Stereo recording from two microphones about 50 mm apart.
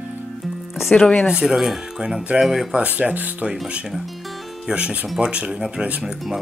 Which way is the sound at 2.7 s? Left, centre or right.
Right.